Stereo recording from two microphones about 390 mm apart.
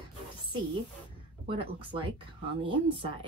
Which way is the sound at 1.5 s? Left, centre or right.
Centre.